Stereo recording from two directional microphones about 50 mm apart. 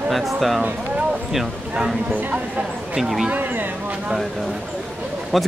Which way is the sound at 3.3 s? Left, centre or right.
Right.